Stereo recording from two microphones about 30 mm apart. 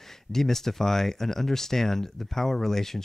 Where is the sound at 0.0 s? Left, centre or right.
Centre.